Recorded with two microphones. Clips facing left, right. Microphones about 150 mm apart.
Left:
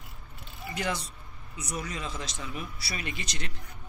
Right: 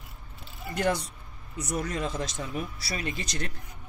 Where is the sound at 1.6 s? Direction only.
55° right (ahead or behind).